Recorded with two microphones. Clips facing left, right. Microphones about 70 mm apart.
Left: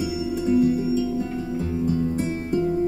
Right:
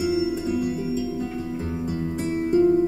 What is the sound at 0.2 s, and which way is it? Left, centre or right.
Music, right.